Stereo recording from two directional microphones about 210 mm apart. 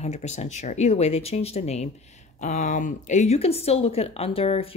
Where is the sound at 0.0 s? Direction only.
35° left (ahead or behind).